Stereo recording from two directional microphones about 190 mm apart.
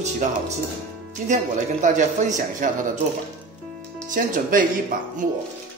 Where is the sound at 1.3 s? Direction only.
40° right (ahead or behind).